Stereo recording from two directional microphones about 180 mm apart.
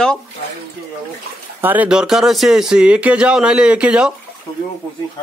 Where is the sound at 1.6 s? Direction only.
10° right (ahead or behind).